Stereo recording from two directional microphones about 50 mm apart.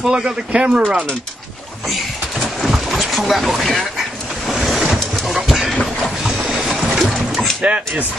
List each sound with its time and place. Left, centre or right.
0.1 s speech: centre
2.6 s boat: centre
4.5 s vehicle: centre
5.2 s train: centre
6.2 s music: centre
7.6 s speech: right